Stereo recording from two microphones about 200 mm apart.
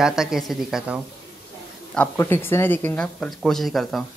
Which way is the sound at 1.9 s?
10° left (ahead or behind).